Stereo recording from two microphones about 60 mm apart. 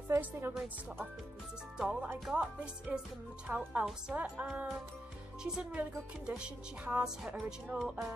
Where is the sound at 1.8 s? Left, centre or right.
Centre.